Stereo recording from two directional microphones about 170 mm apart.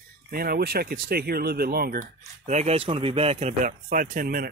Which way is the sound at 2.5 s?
40° right (ahead or behind).